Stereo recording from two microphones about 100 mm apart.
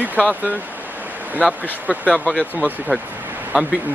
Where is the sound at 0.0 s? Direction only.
15° right (ahead or behind).